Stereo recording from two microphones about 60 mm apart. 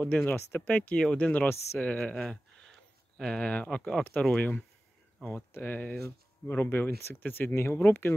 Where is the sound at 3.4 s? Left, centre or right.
Left.